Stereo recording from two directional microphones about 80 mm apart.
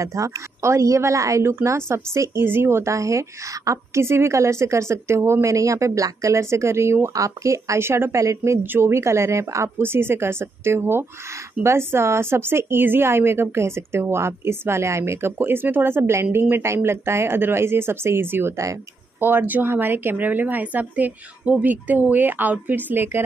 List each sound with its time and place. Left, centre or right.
0.0 s a woman's voice: right